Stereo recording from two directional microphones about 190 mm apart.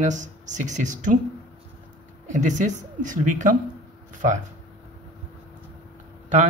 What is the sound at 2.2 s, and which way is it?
Speech, 40° right (ahead or behind).